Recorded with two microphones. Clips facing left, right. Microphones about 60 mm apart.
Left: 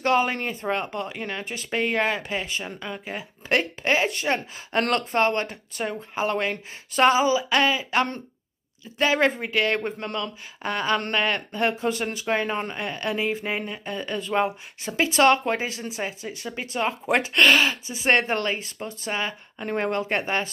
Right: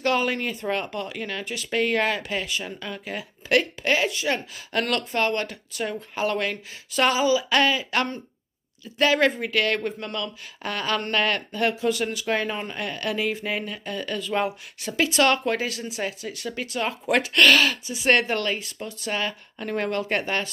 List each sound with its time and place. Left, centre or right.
0.0 s speech: left
1.4 s speech: left
1.7 s speech: left
2.6 s speech: centre
10.6 s speech: centre
11.7 s speech: left